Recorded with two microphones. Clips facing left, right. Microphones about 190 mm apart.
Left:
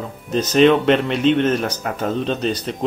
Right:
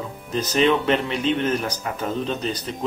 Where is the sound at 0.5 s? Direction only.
65° left (ahead or behind).